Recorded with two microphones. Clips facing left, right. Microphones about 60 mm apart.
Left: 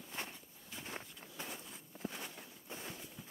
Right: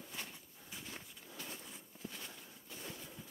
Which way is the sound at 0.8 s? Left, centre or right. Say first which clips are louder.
Left 3 dB; left.